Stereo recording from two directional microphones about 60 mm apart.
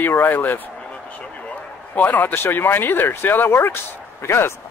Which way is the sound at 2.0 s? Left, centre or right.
Left.